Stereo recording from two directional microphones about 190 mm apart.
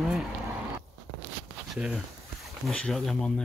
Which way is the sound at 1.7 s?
Centre (ahead or behind).